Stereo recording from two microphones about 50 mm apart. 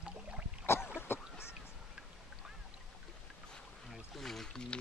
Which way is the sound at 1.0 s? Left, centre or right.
Left.